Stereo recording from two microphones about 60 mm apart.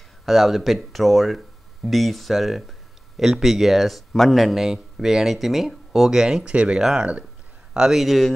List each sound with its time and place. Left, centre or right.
0.2 s speech: centre